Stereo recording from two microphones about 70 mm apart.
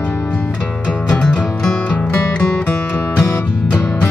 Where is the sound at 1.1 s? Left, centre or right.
Centre.